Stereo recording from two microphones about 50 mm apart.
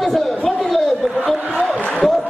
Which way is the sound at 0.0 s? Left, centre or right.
Centre.